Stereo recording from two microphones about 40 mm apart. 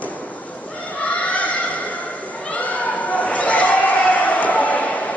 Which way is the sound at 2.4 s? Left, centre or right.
Left.